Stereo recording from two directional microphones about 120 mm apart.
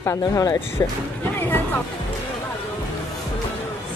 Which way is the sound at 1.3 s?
15° left (ahead or behind).